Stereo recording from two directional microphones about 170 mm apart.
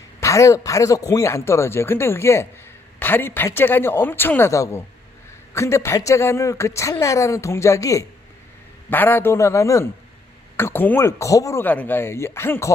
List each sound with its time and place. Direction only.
0.2 s a woman's voice: 20° left (ahead or behind)